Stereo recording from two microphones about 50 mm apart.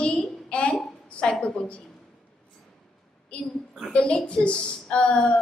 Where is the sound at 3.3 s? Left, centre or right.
Left.